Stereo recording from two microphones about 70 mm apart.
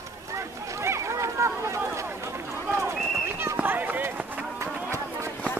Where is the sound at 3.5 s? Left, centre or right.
Right.